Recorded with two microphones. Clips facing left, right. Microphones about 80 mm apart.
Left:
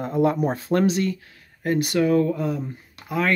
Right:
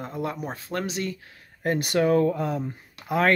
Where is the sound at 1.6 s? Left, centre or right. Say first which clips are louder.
Left 2 dB; right.